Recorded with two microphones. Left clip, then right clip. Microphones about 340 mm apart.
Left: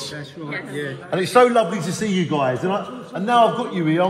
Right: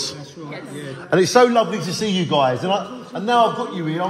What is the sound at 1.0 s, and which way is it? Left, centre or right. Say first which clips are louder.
Speech: right 1 dB; right.